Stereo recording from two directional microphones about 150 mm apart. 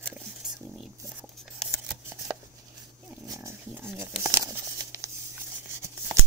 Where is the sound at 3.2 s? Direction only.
20° right (ahead or behind).